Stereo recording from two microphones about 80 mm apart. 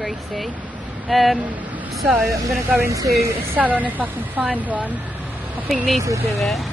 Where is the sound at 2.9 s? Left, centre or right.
Right.